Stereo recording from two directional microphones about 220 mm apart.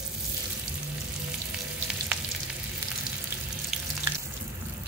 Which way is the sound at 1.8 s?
5° right (ahead or behind).